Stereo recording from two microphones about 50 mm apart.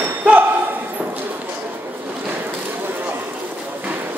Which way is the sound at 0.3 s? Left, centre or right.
Right.